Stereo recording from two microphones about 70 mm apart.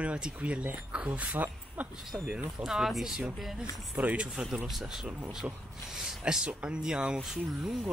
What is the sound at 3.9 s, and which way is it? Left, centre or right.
Speech, centre.